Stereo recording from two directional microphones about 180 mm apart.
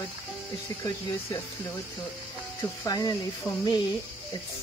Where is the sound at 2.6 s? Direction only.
20° left (ahead or behind).